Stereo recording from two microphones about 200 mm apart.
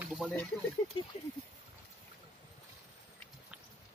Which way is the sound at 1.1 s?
30° left (ahead or behind).